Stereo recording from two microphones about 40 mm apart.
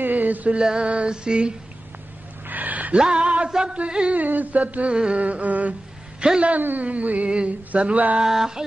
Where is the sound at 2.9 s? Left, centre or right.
Right.